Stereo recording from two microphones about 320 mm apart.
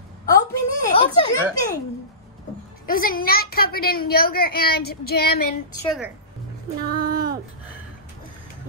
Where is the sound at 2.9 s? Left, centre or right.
Left.